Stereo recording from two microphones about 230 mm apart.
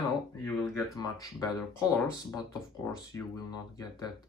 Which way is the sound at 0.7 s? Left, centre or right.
Centre.